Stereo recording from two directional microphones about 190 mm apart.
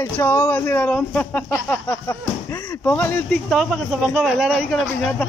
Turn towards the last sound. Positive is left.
turn(degrees=5)  # may be behind; listen again after turning